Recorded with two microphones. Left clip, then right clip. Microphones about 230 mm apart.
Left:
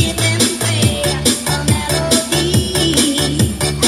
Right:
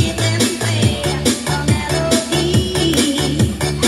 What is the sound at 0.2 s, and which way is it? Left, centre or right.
Music, left.